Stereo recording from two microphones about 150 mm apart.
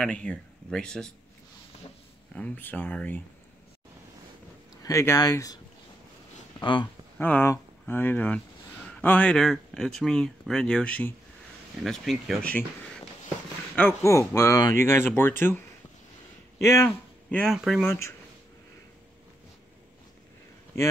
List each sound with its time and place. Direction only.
0.0 s speech: 10° left (ahead or behind)
2.3 s speech: 10° left (ahead or behind)
4.8 s speech: 20° left (ahead or behind)
6.6 s speech: 30° left (ahead or behind)
7.2 s speech: 10° left (ahead or behind)
13.7 s speech: 15° left (ahead or behind)
17.5 s speech: centre (ahead or behind)
17.8 s speech: 20° left (ahead or behind)